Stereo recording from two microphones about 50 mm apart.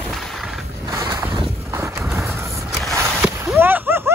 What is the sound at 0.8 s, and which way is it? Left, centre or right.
Vehicle, right.